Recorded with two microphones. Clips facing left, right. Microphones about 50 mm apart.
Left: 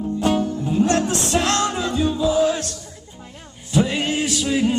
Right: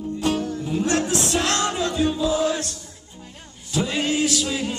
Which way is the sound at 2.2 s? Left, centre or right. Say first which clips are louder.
Left 7 dB; centre.